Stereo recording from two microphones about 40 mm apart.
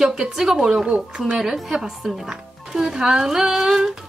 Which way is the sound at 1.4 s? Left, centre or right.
Centre.